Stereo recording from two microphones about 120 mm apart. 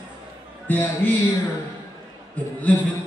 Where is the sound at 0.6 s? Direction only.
15° left (ahead or behind).